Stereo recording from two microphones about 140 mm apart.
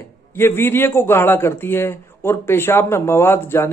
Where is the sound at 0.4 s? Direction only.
15° left (ahead or behind).